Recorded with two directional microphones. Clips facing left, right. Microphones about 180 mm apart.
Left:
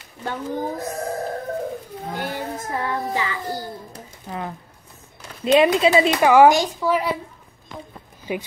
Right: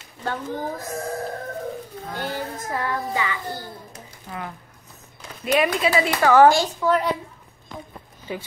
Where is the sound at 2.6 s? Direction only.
25° left (ahead or behind).